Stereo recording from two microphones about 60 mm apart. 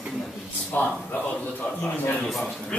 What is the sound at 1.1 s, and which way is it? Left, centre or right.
Speech, left.